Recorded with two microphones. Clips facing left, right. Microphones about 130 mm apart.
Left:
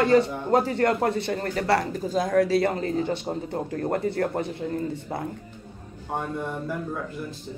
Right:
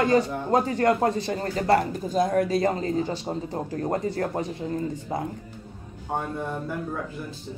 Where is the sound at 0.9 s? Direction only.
30° right (ahead or behind).